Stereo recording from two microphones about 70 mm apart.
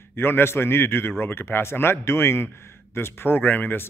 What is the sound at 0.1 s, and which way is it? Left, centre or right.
A man's voice, left.